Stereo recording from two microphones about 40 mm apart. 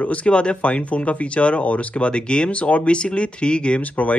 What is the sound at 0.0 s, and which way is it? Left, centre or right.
Speech, left.